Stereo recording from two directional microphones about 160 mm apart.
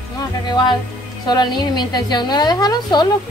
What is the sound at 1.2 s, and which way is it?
A woman's voice, 25° left (ahead or behind).